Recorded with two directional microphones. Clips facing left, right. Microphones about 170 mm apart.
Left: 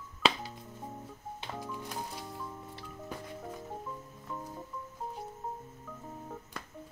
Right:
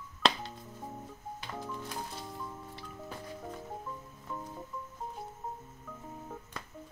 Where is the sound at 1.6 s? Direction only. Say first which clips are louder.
Even; 10° left (ahead or behind).